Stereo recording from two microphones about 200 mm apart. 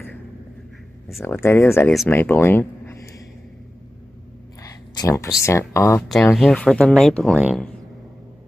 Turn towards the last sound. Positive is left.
turn(degrees=5)  # may be behind; listen again after turning